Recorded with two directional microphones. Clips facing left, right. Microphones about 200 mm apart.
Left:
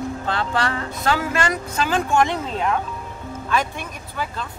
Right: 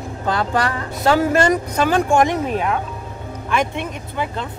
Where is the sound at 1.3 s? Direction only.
40° right (ahead or behind).